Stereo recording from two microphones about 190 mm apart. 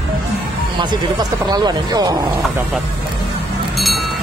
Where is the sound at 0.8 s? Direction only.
25° right (ahead or behind).